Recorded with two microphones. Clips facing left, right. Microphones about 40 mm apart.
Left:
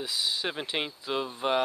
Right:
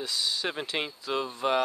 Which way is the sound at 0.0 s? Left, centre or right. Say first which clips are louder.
Even; centre.